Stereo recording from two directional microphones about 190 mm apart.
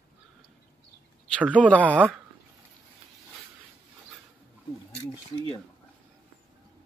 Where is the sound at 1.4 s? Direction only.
5° right (ahead or behind).